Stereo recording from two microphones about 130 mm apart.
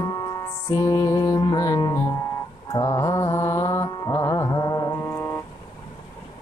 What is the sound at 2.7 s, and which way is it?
Mantra, 25° left (ahead or behind).